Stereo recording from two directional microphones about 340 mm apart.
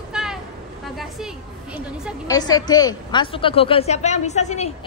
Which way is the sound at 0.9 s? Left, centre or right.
Centre.